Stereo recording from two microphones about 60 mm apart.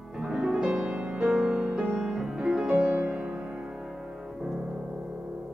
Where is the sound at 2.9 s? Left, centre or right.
Right.